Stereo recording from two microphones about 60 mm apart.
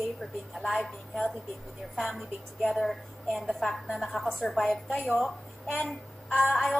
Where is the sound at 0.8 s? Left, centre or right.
Centre.